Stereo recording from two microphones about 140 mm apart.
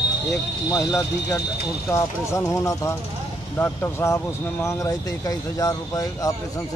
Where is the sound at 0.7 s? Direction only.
20° left (ahead or behind).